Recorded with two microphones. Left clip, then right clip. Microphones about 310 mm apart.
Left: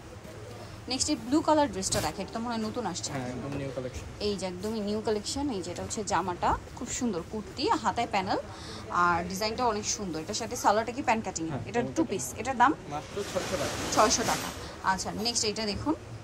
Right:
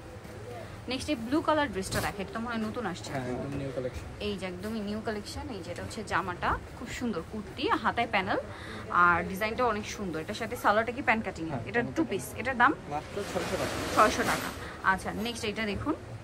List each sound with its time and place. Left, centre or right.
0.8 s a woman's voice: centre
4.2 s a woman's voice: centre
13.4 s speech: centre
13.9 s a woman's voice: centre